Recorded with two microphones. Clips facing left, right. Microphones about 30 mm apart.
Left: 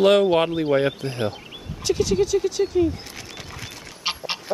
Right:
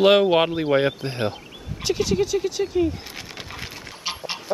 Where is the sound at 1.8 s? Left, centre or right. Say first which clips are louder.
Left 1 dB; centre.